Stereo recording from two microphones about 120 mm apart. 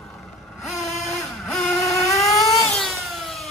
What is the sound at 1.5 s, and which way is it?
Vehicle, centre (ahead or behind).